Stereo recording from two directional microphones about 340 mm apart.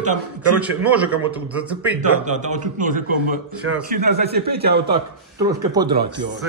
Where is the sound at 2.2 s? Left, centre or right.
Right.